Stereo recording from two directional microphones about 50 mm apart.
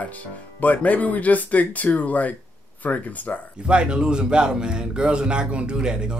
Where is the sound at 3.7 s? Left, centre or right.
Centre.